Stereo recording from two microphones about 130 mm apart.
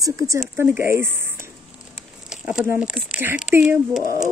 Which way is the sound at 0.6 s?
15° right (ahead or behind).